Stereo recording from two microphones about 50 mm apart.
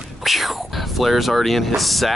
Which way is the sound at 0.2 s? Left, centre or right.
Centre.